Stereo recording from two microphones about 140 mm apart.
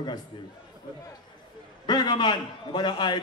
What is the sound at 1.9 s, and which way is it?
A man's voice, 30° left (ahead or behind).